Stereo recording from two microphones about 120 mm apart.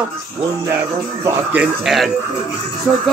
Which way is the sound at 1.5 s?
10° right (ahead or behind).